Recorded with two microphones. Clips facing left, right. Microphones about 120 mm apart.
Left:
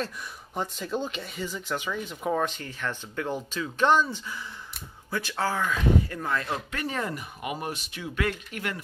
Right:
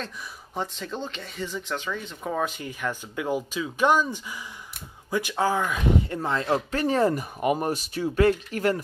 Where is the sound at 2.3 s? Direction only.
10° right (ahead or behind); by 8.8 s 35° right (ahead or behind).